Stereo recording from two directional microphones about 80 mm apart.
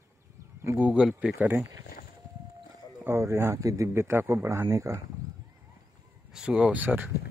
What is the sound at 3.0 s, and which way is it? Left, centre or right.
Speech, right.